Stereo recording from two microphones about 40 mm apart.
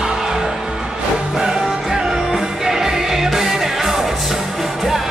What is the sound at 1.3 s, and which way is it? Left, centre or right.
Music, centre.